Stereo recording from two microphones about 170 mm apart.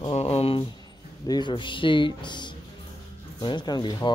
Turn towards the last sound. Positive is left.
turn(degrees=25)  # may be behind; listen again after turning